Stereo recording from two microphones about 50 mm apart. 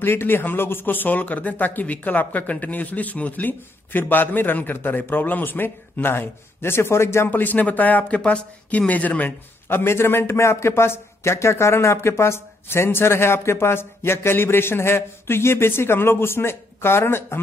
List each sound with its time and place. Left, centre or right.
0.0 s a man's voice: left
7.2 s speech: left
8.2 s speech: left
9.7 s a man's voice: left